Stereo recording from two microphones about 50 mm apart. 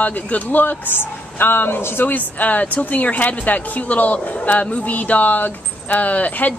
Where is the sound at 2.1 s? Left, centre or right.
Left.